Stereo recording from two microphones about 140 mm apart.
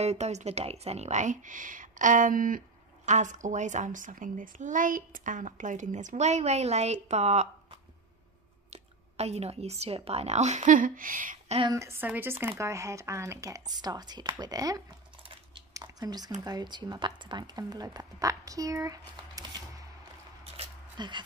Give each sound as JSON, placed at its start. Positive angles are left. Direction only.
{"t": 0.0, "sound": "a child's voice", "side_deg": -50}
{"t": 3.1, "sound": "a child's voice", "side_deg": -60}
{"t": 8.6, "sound": "a woman's voice", "side_deg": -50}
{"t": 11.7, "sound": "speech", "side_deg": -20}
{"t": 15.7, "sound": "a sound", "side_deg": -30}
{"t": 16.4, "sound": "speech", "side_deg": -30}
{"t": 21.0, "sound": "speech", "side_deg": -30}